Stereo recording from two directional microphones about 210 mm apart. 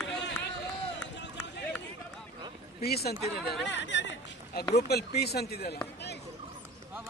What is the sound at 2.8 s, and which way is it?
Speech, 50° left (ahead or behind).